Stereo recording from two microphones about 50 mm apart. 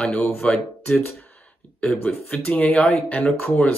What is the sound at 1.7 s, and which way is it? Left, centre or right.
Speech, left.